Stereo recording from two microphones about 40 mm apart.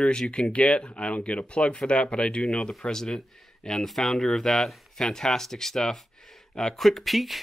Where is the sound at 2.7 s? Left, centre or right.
Centre.